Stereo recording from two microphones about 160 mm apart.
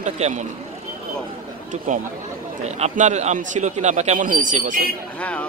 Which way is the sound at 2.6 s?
45° right (ahead or behind).